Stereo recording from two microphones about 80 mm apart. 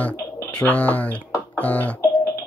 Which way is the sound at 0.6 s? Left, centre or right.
Centre.